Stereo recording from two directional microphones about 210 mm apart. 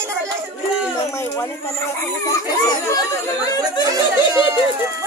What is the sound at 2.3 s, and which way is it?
Children playing, 15° left (ahead or behind).